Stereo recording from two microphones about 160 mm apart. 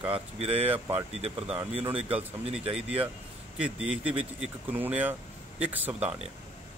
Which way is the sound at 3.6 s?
10° right (ahead or behind).